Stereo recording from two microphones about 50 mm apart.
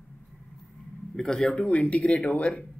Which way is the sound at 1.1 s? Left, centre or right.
Centre.